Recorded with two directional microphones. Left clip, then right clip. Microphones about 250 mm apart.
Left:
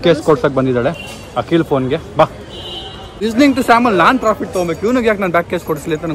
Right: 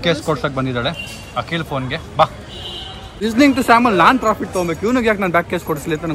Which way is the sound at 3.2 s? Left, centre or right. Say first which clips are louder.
Left 2 dB; centre.